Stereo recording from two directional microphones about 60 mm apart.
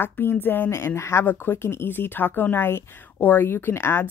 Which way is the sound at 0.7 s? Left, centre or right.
Left.